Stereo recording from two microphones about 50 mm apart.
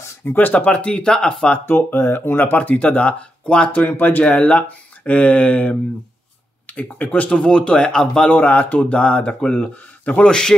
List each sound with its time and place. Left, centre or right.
0.2 s speech: left
0.7 s speech: left
1.7 s speech: left; by 8.3 s centre
8.3 s speech: left
8.9 s a man's voice: left